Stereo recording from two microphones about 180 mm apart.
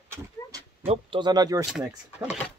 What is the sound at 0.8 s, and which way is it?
Speech, 30° right (ahead or behind).